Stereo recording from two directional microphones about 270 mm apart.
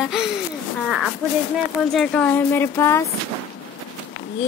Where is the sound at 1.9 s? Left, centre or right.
Centre.